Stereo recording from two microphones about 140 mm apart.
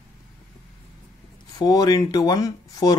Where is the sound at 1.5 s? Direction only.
25° left (ahead or behind).